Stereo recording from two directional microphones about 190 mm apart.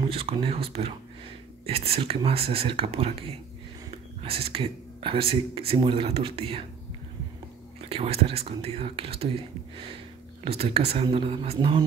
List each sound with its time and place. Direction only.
0.0 s speech: 30° right (ahead or behind)
7.9 s speech: 30° right (ahead or behind)
10.4 s speech: 30° right (ahead or behind)